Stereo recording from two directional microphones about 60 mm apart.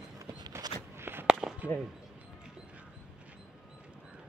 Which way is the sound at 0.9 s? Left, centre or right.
Right.